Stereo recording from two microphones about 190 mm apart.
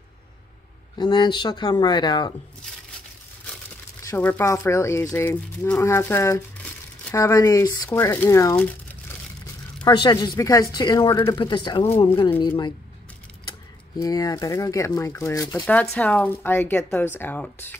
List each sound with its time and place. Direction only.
0.9 s a woman's voice: 25° left (ahead or behind)
4.0 s speech: 10° left (ahead or behind)
9.8 s a woman's voice: 20° left (ahead or behind)
15.6 s speech: 5° left (ahead or behind)